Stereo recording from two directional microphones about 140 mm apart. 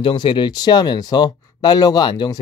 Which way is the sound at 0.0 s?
35° left (ahead or behind).